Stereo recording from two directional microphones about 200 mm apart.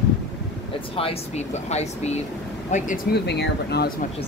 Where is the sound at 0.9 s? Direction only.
30° left (ahead or behind).